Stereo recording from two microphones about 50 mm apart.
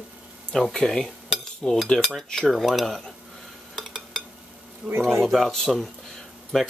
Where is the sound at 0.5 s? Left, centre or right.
Centre.